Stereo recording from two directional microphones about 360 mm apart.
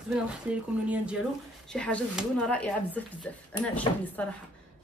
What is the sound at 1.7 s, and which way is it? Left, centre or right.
A woman's voice, centre.